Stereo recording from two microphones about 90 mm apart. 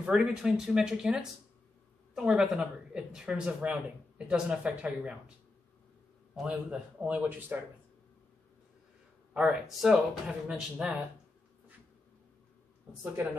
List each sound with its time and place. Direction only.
0.2 s speech: 5° right (ahead or behind)
6.3 s speech: 10° right (ahead or behind)
9.3 s speech: 10° right (ahead or behind)
13.0 s speech: 25° right (ahead or behind)